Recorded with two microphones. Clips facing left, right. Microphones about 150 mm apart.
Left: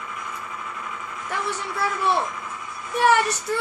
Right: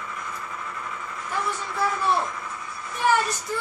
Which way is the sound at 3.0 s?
70° left (ahead or behind).